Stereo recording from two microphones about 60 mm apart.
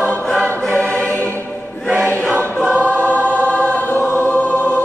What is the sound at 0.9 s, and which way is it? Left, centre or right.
Music, left.